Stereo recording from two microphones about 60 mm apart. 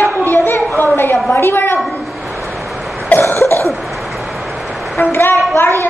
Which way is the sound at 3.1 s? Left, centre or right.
Left.